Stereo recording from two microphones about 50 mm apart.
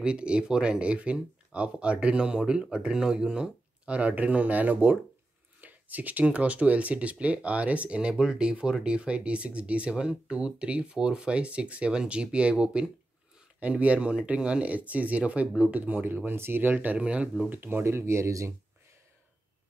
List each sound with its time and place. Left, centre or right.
0.0 s speech: right
13.6 s speech: right
16.7 s speech: right
17.5 s speech: right